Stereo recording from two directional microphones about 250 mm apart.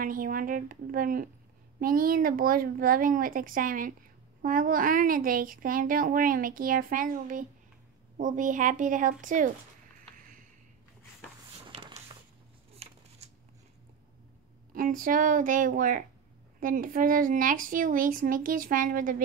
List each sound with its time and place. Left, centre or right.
0.0 s a woman's voice: right
11.7 s a sound: right
13.2 s scissors: right
14.7 s a woman's voice: right